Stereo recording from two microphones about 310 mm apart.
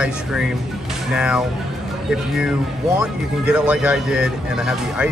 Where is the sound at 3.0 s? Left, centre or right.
Centre.